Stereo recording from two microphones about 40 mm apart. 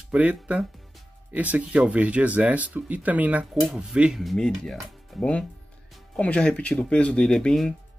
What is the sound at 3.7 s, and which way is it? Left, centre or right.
Speech, right.